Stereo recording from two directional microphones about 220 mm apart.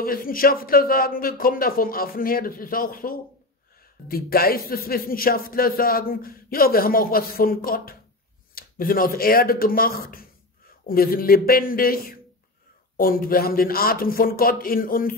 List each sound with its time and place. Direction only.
0.0 s speech: 40° left (ahead or behind)